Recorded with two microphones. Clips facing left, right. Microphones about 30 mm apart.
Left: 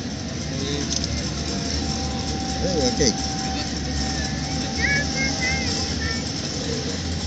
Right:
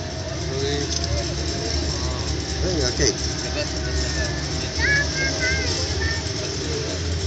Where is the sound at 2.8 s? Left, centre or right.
Right.